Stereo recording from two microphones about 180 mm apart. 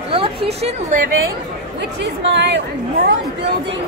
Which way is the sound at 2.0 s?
75° right (ahead or behind).